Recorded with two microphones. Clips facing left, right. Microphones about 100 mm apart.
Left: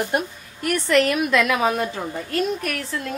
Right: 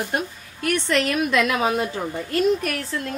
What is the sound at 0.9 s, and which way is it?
Speech, 35° left (ahead or behind).